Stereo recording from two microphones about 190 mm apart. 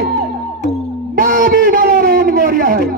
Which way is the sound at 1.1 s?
45° right (ahead or behind).